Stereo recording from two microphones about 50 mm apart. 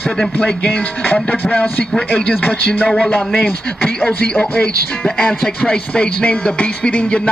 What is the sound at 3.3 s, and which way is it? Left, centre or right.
Speech, left.